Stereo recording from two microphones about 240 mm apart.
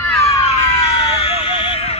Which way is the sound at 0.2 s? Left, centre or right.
Left.